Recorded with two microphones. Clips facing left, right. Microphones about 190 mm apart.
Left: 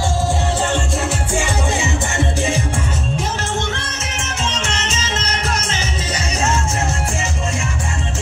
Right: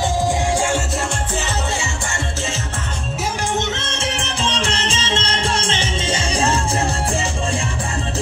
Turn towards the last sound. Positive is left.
turn(degrees=-30)  # may be behind; listen again after turning